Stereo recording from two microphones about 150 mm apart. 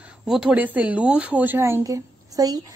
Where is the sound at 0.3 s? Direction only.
5° right (ahead or behind); by 2.6 s 25° right (ahead or behind).